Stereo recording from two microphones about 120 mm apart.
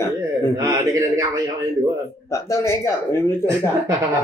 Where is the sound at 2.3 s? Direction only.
25° left (ahead or behind).